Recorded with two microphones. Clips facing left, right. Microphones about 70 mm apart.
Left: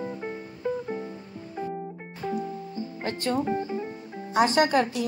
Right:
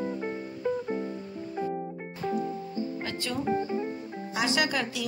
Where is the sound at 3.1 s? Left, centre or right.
Left.